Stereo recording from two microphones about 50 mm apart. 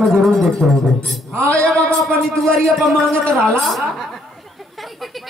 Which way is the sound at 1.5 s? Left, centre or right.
Left.